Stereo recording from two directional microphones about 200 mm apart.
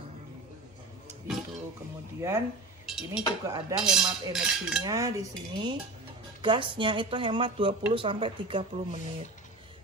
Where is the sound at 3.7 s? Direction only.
15° right (ahead or behind).